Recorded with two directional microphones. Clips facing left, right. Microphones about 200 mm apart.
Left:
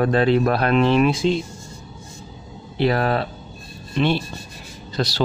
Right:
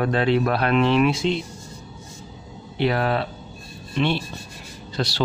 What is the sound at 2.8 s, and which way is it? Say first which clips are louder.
Speech: left 2 dB; 40° left (ahead or behind).